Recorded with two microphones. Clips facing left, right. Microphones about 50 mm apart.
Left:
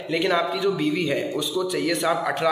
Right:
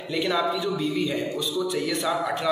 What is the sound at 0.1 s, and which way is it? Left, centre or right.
A man's voice, left.